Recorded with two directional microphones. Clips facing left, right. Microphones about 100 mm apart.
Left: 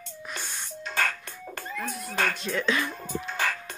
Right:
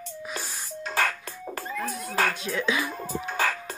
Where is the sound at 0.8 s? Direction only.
35° right (ahead or behind).